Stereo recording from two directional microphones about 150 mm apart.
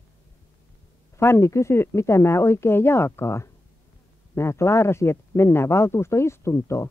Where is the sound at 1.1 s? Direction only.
15° left (ahead or behind).